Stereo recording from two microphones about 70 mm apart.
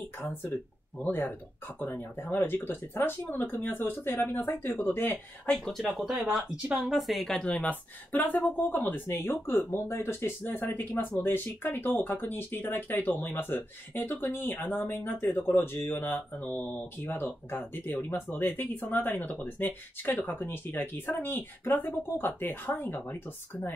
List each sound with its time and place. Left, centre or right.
0.2 s speech: left
5.7 s speech: centre
7.3 s speech: centre